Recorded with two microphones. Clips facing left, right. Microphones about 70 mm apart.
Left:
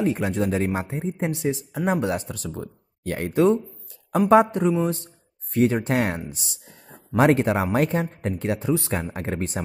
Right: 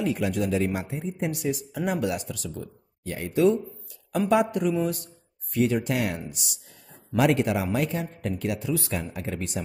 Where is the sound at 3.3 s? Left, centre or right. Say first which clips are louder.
Left 2 dB; left.